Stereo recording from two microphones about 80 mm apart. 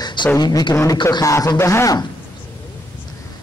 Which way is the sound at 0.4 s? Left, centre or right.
Left.